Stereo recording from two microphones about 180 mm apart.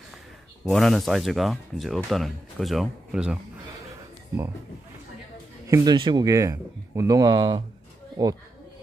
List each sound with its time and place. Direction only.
0.7 s speech: centre (ahead or behind)
5.7 s speech: 15° right (ahead or behind)